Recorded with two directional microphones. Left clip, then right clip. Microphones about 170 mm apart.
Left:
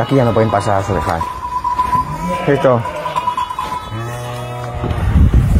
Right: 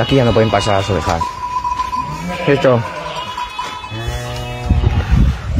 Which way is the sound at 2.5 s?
40° right (ahead or behind).